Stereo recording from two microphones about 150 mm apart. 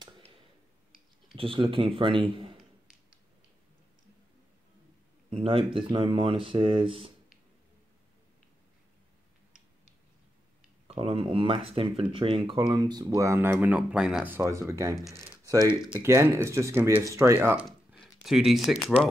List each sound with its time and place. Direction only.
1.3 s speech: 35° right (ahead or behind)
5.3 s speech: 35° right (ahead or behind)
10.9 s speech: 40° right (ahead or behind); by 15.0 s 20° right (ahead or behind)
16.0 s speech: 15° right (ahead or behind)
18.2 s speech: centre (ahead or behind)